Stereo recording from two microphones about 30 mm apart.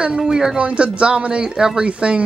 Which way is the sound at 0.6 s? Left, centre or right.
Right.